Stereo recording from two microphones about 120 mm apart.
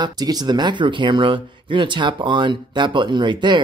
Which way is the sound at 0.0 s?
35° right (ahead or behind).